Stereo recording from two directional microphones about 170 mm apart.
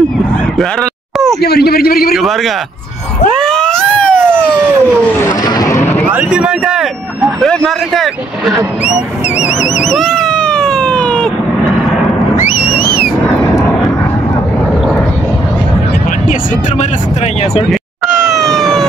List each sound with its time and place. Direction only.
1.4 s speech: 70° left (ahead or behind)
3.3 s vehicle: 5° left (ahead or behind)
6.0 s speech: 5° right (ahead or behind)
9.8 s cat: centre (ahead or behind)
13.0 s vehicle: 5° left (ahead or behind)
17.6 s cat: centre (ahead or behind)